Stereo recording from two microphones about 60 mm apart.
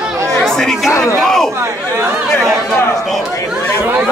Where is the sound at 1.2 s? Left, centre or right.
Centre.